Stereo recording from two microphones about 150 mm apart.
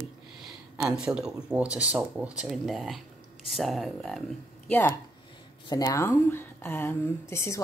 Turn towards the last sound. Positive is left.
turn(degrees=20)  # may be behind; listen again after turning